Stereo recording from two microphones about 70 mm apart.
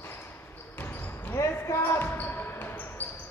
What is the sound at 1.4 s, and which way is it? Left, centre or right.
Basketball bounce, left.